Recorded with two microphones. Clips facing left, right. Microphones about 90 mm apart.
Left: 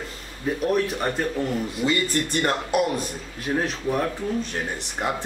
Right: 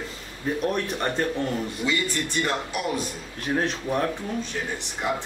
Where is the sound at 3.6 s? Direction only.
Centre (ahead or behind).